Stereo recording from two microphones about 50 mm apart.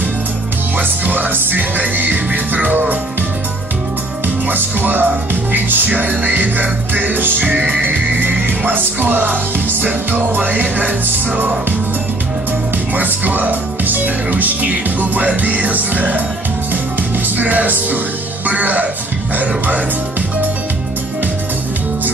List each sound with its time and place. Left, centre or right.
0.7 s music: right
4.5 s music: right
12.9 s music: right
17.4 s music: right